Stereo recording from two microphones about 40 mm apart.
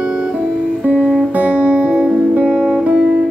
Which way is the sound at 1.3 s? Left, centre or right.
Right.